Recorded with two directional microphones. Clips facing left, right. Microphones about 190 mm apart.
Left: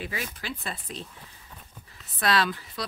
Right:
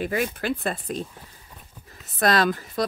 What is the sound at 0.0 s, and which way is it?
Speech, 50° right (ahead or behind).